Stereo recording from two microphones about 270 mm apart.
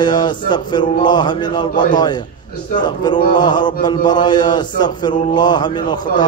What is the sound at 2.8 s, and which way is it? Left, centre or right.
A man's voice, centre.